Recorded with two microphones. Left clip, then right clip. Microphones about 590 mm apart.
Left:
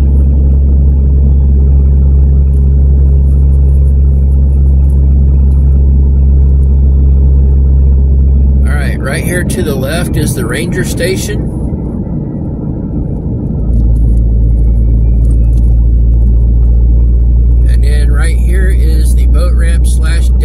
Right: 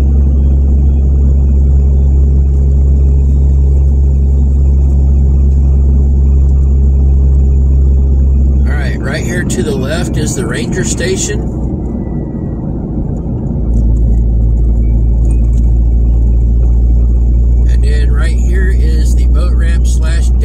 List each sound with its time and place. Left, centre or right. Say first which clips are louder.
8.8 s vehicle: left 2 dB; left